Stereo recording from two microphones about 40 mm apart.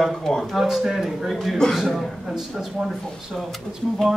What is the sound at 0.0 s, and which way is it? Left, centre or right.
Speech, centre.